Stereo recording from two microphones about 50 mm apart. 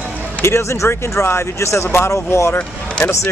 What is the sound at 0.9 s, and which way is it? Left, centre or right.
Speech, left.